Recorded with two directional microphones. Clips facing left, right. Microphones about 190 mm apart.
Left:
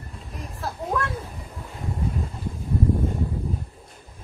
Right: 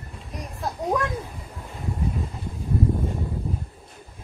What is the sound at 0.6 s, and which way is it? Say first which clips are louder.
Children playing: right 2 dB; 15° right (ahead or behind).